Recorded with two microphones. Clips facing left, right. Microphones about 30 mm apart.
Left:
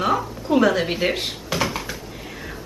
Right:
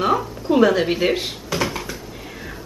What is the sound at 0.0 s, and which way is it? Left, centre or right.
Speech, centre.